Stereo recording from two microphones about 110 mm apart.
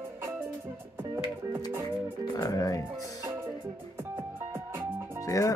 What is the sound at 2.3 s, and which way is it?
Music, 35° left (ahead or behind).